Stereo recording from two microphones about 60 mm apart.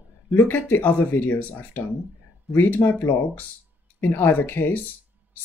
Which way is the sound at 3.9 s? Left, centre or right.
Left.